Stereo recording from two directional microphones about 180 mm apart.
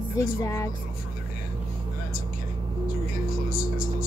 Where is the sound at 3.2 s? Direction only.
50° left (ahead or behind).